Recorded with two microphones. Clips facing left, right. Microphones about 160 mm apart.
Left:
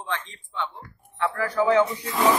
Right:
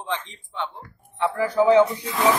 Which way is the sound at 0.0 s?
20° right (ahead or behind).